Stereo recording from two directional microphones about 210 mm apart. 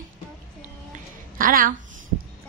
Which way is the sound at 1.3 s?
40° right (ahead or behind).